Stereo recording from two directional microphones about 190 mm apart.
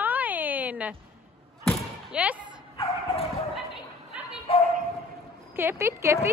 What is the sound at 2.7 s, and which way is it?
Bow-wow, 30° left (ahead or behind).